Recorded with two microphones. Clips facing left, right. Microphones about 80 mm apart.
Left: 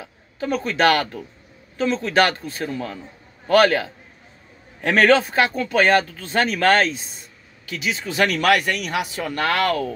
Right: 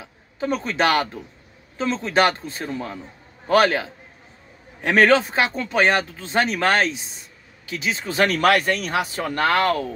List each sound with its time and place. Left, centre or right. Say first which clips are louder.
0.4 s speech: left 2 dB; right
7.6 s speech: even; right